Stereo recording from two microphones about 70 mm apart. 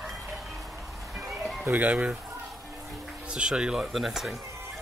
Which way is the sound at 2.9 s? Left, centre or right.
Centre.